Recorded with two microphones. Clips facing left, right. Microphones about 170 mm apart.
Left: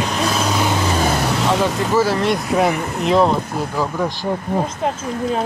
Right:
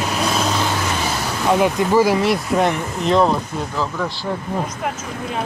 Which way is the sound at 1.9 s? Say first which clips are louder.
Right 2 dB; 15° right (ahead or behind).